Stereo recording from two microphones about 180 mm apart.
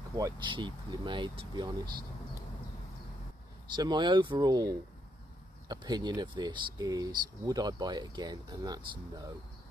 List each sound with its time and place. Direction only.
0.1 s speech: 20° right (ahead or behind)
3.6 s speech: 25° right (ahead or behind)